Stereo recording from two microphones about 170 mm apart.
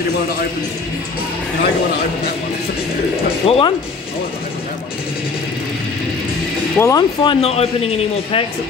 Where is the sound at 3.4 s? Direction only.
35° left (ahead or behind).